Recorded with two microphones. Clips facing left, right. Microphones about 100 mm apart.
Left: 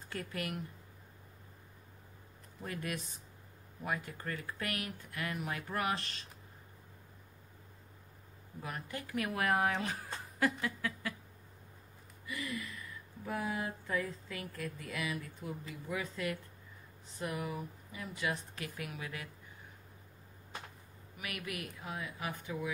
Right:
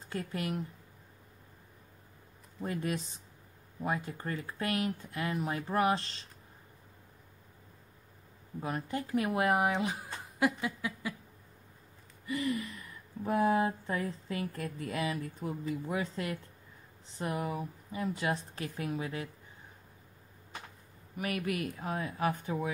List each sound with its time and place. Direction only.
0.1 s speech: 25° right (ahead or behind)
2.6 s speech: 30° right (ahead or behind)
8.5 s speech: 30° right (ahead or behind)
12.3 s a woman's voice: 30° right (ahead or behind)
21.2 s a woman's voice: 35° right (ahead or behind)